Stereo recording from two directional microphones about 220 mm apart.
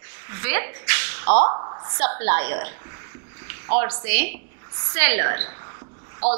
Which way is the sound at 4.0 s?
10° right (ahead or behind).